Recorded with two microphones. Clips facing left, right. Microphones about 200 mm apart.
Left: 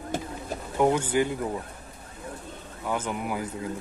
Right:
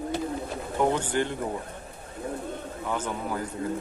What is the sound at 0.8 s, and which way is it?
Speech, 10° left (ahead or behind).